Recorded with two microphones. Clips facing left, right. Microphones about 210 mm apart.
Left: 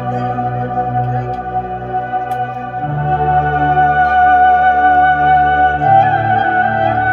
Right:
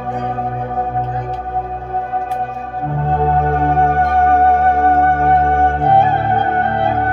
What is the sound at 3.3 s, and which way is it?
Music, 70° left (ahead or behind).